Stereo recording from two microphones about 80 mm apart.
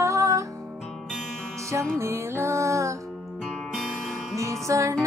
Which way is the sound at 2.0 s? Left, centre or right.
Right.